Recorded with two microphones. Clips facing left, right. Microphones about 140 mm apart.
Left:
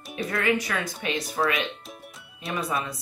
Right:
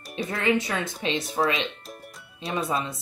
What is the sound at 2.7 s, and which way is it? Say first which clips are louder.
Speech: right 1 dB; 25° right (ahead or behind).